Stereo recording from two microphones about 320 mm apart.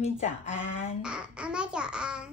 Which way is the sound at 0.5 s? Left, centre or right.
Centre.